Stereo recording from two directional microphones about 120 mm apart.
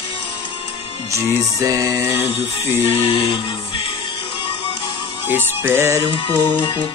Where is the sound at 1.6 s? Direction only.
25° right (ahead or behind).